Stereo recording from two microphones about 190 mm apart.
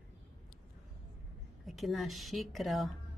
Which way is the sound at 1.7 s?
Centre (ahead or behind).